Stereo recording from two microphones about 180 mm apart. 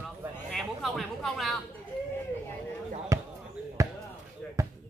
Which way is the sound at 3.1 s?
15° right (ahead or behind).